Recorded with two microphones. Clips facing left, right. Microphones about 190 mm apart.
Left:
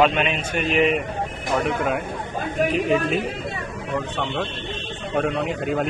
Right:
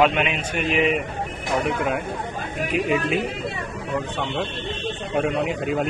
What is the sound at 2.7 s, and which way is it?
Speech, 45° left (ahead or behind).